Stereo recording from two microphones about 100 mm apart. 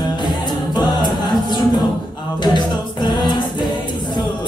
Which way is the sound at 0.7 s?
45° left (ahead or behind).